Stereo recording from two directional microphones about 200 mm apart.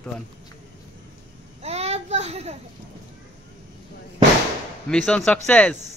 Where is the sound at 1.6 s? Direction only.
30° right (ahead or behind).